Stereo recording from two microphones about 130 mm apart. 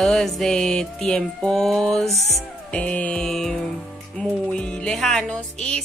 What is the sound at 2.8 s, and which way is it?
A woman's voice, 10° left (ahead or behind).